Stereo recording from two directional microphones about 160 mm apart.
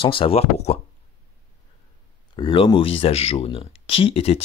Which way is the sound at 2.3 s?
30° left (ahead or behind).